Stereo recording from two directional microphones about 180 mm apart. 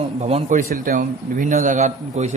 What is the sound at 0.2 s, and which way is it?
A man's voice, 40° right (ahead or behind).